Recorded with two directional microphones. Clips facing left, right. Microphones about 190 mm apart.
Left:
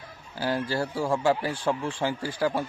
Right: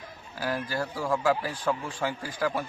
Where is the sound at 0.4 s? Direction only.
30° left (ahead or behind).